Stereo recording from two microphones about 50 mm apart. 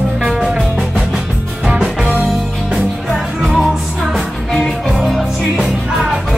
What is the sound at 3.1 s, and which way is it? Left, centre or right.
Music, centre.